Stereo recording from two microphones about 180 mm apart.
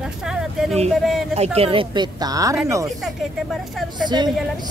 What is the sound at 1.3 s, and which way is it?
A woman's voice, 35° right (ahead or behind).